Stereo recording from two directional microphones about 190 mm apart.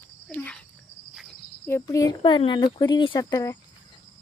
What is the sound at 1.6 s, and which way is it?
Speech, 15° left (ahead or behind).